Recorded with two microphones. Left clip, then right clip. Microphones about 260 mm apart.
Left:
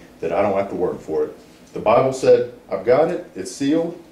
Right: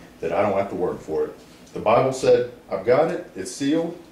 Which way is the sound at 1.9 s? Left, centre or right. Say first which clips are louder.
Left 3 dB; centre.